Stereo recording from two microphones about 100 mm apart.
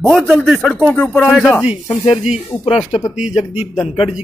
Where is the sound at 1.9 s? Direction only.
85° left.